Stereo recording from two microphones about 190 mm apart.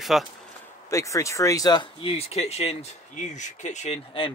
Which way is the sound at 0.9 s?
15° left (ahead or behind).